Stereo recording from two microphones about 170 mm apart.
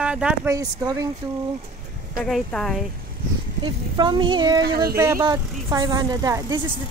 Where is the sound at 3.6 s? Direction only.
25° right (ahead or behind).